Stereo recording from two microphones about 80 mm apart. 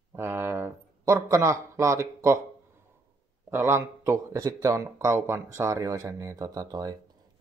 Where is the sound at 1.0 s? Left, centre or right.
Right.